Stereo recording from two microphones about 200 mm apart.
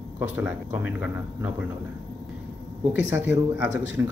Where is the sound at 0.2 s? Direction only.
10° right (ahead or behind).